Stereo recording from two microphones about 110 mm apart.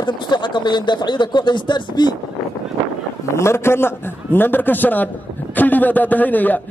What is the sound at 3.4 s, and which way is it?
A man's voice, 25° left (ahead or behind).